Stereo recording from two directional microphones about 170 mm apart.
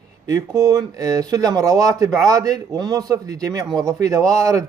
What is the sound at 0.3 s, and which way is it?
A man's voice, 20° right (ahead or behind).